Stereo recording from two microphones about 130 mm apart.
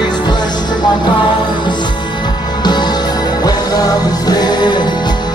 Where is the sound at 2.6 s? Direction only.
35° left (ahead or behind).